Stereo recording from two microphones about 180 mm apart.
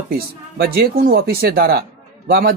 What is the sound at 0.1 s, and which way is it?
Speech, 60° right (ahead or behind).